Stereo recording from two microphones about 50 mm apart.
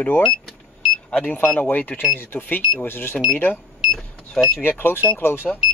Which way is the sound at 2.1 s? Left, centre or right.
Left.